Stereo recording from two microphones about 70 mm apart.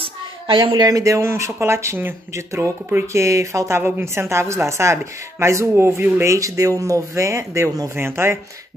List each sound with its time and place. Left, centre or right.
0.6 s speech: right
0.9 s a woman's voice: right
2.3 s a woman's voice: right
7.9 s a woman's voice: right